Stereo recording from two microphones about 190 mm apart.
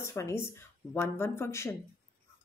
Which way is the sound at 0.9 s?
15° left (ahead or behind).